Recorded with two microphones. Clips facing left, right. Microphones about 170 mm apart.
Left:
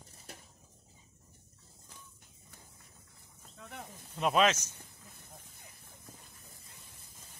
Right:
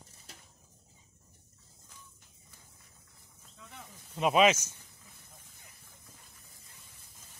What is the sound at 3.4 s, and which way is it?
Snake, 55° left (ahead or behind).